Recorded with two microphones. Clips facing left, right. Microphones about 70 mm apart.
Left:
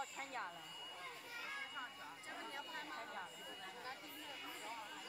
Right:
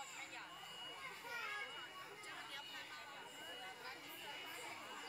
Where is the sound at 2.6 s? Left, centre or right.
Left.